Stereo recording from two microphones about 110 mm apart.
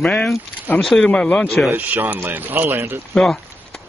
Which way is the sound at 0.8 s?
5° left (ahead or behind).